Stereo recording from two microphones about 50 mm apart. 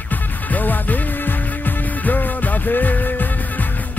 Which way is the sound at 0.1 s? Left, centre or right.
Left.